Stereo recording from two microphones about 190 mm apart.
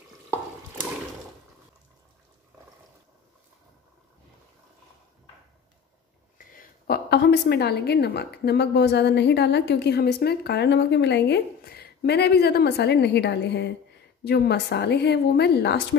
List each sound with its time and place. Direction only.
6.3 s a woman's voice: 45° left (ahead or behind)